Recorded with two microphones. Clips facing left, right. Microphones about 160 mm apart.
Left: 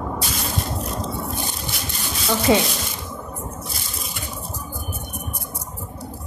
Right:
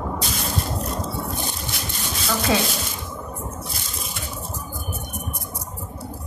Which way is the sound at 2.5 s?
20° left (ahead or behind).